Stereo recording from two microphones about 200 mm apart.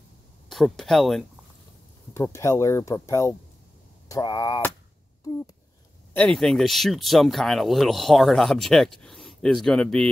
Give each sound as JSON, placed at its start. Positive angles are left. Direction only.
{"t": 0.5, "sound": "speech", "side_deg": 0}
{"t": 2.1, "sound": "speech", "side_deg": 15}
{"t": 6.1, "sound": "speech", "side_deg": 5}